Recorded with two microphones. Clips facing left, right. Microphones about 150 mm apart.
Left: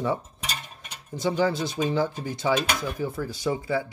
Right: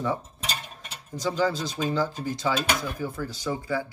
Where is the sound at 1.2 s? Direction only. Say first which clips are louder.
Left 2 dB; 55° left (ahead or behind).